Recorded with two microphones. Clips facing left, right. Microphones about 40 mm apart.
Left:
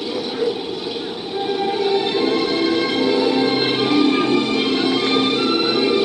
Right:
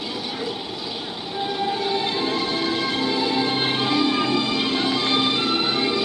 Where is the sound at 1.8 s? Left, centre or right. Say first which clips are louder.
Left 5 dB; left.